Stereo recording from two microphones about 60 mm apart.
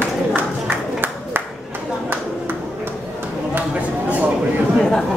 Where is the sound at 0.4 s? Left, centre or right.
Right.